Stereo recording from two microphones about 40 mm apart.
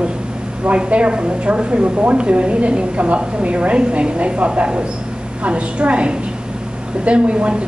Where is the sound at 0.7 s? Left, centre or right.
Right.